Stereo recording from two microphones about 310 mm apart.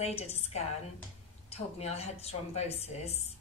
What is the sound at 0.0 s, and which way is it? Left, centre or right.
Speech, left.